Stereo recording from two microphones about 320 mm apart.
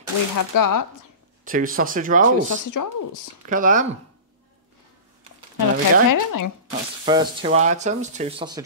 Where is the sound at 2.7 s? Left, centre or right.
Left.